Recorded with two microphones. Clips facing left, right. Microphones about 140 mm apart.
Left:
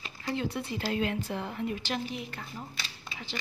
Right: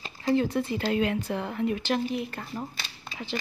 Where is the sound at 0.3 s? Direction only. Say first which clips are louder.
Right 8 dB; 45° right (ahead or behind).